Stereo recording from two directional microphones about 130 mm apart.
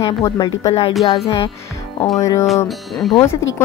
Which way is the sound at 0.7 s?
50° left (ahead or behind).